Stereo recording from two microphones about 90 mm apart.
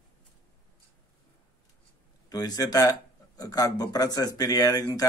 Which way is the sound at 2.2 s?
45° left (ahead or behind).